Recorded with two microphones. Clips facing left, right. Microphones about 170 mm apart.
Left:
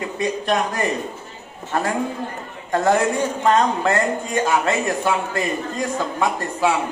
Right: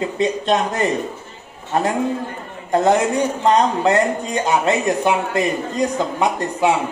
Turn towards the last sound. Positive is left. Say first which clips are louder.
# right 3 dB
turn(degrees=-20)  # may be behind; listen again after turning